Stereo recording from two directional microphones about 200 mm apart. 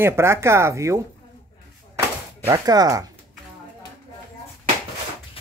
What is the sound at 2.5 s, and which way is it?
Speech, 20° right (ahead or behind).